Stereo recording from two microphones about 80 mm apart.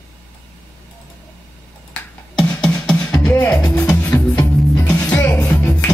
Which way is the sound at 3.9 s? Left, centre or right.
Left.